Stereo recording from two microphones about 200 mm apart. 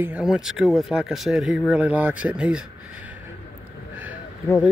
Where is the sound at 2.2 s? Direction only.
5° right (ahead or behind).